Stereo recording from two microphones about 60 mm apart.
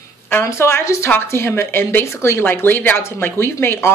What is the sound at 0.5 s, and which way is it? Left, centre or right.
A woman's voice, left.